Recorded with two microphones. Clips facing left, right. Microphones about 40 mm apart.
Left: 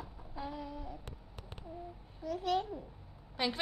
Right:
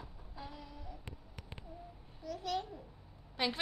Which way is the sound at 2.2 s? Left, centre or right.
Left.